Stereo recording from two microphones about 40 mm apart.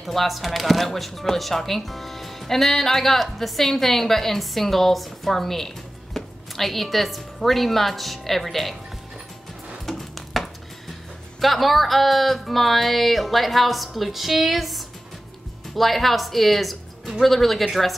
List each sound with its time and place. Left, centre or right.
0.0 s a woman's voice: centre
9.8 s a sound: centre
11.3 s speech: centre